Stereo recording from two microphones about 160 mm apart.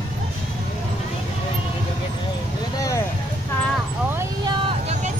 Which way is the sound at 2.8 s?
20° left (ahead or behind).